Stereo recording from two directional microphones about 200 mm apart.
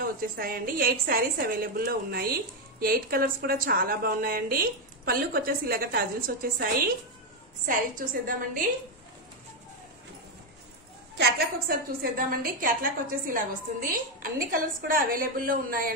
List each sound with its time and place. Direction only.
0.0 s a woman's voice: 45° right (ahead or behind)
7.6 s a woman's voice: 40° right (ahead or behind)
11.1 s a woman's voice: 55° right (ahead or behind)